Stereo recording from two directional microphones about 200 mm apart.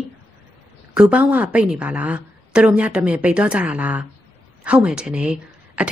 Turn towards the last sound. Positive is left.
turn(degrees=-5)  # may be behind; listen again after turning